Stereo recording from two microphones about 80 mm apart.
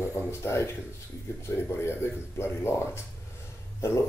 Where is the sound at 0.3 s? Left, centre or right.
Left.